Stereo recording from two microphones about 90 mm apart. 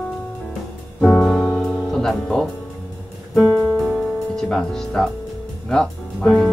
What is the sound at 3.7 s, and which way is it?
Music, centre (ahead or behind).